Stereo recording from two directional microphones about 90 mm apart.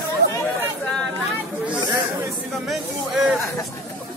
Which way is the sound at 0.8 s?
5° left (ahead or behind).